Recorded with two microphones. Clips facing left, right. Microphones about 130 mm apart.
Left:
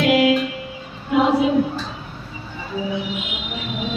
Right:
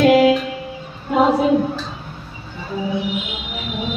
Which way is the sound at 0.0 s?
40° right (ahead or behind).